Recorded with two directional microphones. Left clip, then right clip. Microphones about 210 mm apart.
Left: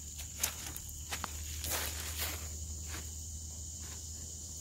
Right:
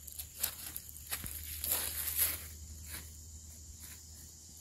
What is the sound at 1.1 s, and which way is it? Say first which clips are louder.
Walk: left 4 dB; 55° right (ahead or behind).